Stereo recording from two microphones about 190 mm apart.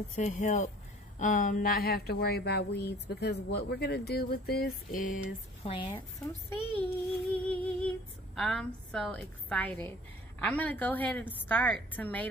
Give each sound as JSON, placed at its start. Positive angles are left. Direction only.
{"t": 0.1, "sound": "speech", "side_deg": 40}
{"t": 5.6, "sound": "speech", "side_deg": 30}
{"t": 6.5, "sound": "a child's voice", "side_deg": 10}
{"t": 7.4, "sound": "music", "side_deg": 5}
{"t": 8.4, "sound": "a woman's voice", "side_deg": 0}